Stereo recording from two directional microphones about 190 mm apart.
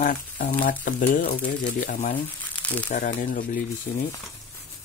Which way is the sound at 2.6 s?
10° left (ahead or behind).